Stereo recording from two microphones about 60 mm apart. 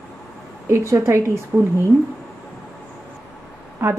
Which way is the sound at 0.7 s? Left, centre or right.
Right.